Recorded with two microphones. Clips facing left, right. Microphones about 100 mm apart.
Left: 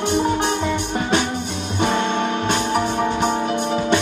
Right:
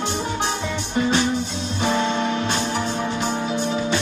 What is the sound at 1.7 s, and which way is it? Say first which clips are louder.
Music: left 2 dB; 55° left (ahead or behind).